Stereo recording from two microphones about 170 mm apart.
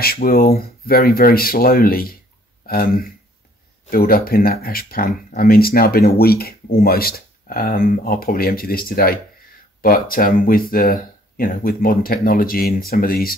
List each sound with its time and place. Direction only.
0.0 s speech: 60° left (ahead or behind)